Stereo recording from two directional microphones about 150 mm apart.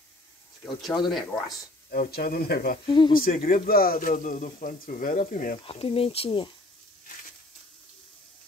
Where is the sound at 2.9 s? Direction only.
30° left (ahead or behind).